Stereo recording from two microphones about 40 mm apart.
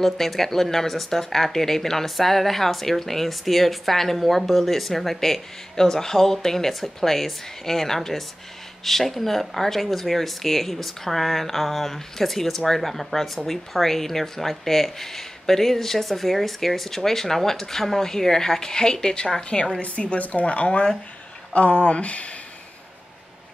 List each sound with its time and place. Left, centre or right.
0.0 s speech: centre; by 22.3 s left